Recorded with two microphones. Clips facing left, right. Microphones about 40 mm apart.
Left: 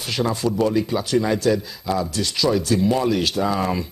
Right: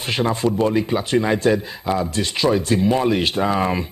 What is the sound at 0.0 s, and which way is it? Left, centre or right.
Speech, right.